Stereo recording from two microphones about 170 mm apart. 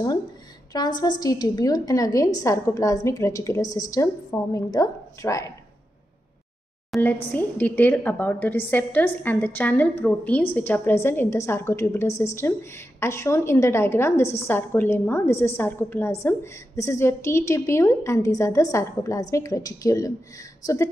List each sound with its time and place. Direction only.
0.7 s a woman's voice: 25° left (ahead or behind)
6.9 s a woman's voice: centre (ahead or behind); by 20.9 s 20° left (ahead or behind)